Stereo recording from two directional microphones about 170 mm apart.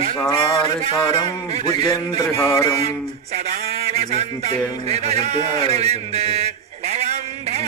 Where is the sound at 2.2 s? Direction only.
20° left (ahead or behind).